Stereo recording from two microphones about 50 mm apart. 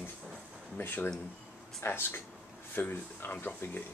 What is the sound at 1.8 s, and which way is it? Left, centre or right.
Speech, left.